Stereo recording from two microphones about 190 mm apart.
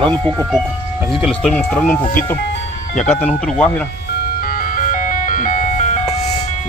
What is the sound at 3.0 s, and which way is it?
Speech, 10° left (ahead or behind).